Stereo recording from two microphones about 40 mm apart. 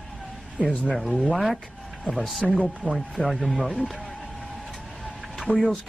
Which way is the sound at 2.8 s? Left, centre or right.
Left.